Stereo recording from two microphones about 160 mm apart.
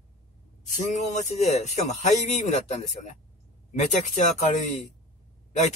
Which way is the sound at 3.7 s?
45° left (ahead or behind).